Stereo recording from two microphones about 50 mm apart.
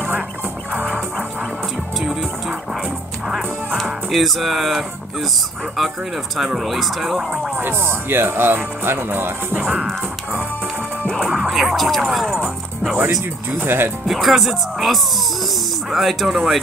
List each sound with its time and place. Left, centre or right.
3.3 s music: centre
6.3 s speech: centre
7.5 s speech: right
9.6 s music: centre
11.5 s speech: centre
13.6 s speech: right
14.0 s speech: centre